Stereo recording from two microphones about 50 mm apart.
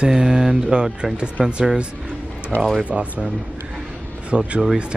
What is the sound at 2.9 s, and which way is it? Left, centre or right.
Speech, centre.